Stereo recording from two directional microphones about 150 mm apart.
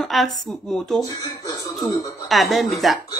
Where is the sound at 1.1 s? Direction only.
25° left (ahead or behind).